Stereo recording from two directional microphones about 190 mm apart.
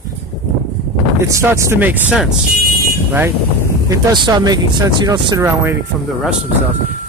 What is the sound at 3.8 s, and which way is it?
Speech, 20° right (ahead or behind).